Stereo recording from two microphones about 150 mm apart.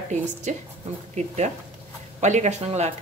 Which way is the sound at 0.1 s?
50° right (ahead or behind).